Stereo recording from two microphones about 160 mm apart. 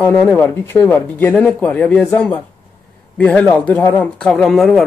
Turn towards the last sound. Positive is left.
turn(degrees=0)  # may be behind; listen again after turning